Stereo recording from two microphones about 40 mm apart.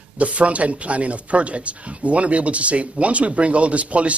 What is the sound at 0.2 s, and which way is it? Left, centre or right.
Speech, right.